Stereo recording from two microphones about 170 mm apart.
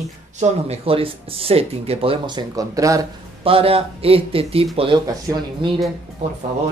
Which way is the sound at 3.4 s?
35° right (ahead or behind).